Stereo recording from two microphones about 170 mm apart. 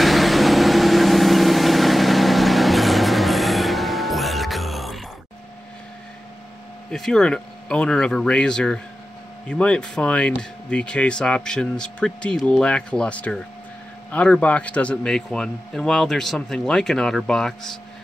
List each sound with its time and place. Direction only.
0.0 s vehicle: centre (ahead or behind)
6.9 s speech: 5° left (ahead or behind)